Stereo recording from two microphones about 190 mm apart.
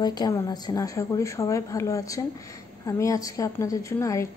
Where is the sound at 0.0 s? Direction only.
20° left (ahead or behind).